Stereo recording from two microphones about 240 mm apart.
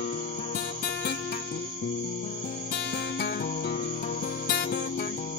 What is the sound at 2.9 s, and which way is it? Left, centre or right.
Music, left.